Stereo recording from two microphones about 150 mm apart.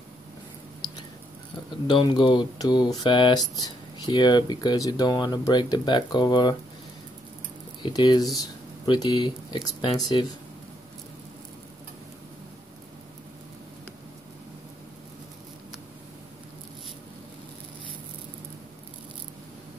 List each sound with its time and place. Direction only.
1.9 s speech: 30° left (ahead or behind)
7.8 s speech: 30° left (ahead or behind)